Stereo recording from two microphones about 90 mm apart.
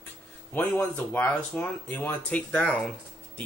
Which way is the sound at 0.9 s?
15° left (ahead or behind).